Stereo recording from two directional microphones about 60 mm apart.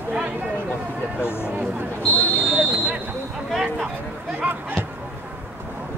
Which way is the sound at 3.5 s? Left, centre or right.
Centre.